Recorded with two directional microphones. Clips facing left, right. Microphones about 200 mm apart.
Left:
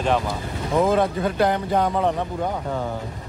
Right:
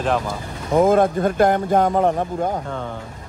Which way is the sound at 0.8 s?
50° right (ahead or behind).